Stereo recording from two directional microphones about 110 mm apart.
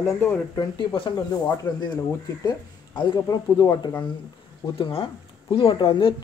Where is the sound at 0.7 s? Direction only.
50° left (ahead or behind).